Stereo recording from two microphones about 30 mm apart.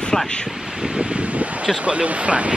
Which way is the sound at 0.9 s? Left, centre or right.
Right.